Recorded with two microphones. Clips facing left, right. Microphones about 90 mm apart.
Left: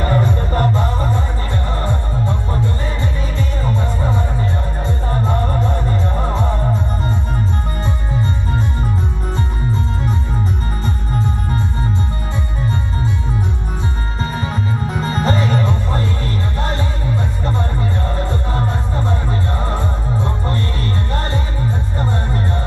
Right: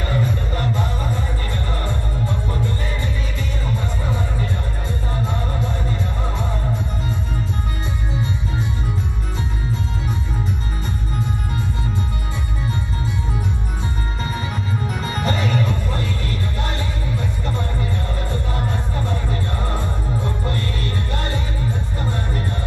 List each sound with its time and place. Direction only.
0.0 s music: 40° left (ahead or behind)
1.7 s music: 30° left (ahead or behind)
3.6 s music: 35° left (ahead or behind)
14.2 s music: 35° left (ahead or behind)